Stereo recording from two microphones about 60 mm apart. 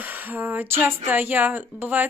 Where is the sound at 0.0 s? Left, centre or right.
Right.